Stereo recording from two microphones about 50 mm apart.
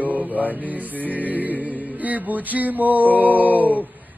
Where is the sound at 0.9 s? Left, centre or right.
Left.